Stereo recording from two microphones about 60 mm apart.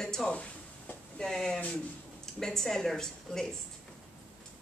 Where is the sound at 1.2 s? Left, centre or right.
Centre.